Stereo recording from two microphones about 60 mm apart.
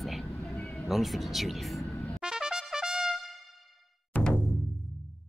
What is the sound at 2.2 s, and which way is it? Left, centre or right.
Trumpet, centre.